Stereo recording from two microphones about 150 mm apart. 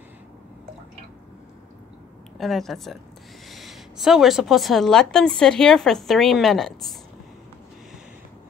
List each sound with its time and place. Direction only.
2.3 s a woman's voice: centre (ahead or behind)